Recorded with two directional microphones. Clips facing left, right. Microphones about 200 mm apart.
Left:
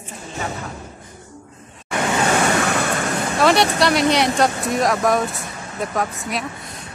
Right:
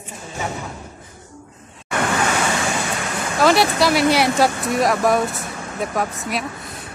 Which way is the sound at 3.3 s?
Centre (ahead or behind).